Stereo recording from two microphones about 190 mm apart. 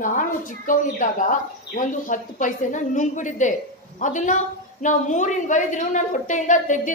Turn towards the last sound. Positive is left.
turn(degrees=40)  # may be behind; listen again after turning